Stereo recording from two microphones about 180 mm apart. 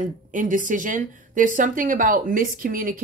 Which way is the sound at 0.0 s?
45° right (ahead or behind).